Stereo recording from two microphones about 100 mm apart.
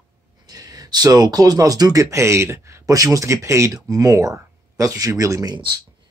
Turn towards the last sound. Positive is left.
turn(degrees=-35)  # may be behind; listen again after turning